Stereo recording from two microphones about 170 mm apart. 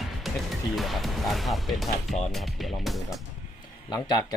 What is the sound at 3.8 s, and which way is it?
Speech, 25° left (ahead or behind).